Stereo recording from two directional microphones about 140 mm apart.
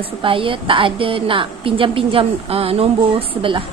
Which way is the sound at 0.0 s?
40° right (ahead or behind).